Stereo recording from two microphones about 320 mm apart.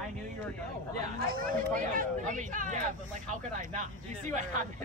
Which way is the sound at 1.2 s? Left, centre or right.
Right.